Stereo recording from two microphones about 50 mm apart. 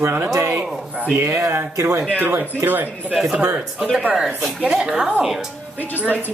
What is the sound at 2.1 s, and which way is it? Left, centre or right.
Speech, right.